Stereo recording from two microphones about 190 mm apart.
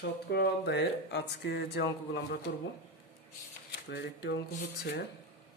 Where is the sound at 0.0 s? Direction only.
60° left (ahead or behind).